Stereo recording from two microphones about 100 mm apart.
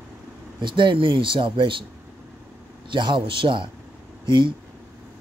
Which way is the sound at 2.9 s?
55° right (ahead or behind).